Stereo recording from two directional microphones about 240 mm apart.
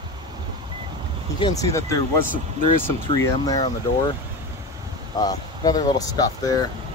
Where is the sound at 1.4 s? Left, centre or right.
Centre.